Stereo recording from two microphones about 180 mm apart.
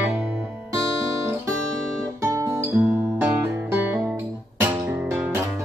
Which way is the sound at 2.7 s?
5° right (ahead or behind).